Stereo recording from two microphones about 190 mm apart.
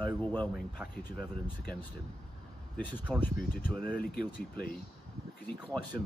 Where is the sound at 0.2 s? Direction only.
10° left (ahead or behind).